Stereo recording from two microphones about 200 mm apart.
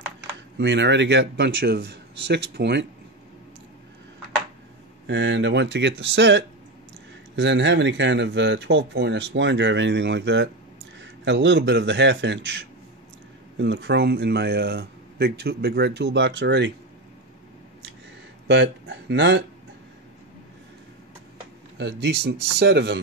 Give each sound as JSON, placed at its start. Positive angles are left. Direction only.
{"t": 0.6, "sound": "speech", "side_deg": -60}
{"t": 5.0, "sound": "speech", "side_deg": -65}
{"t": 18.5, "sound": "speech", "side_deg": -60}
{"t": 21.7, "sound": "speech", "side_deg": -60}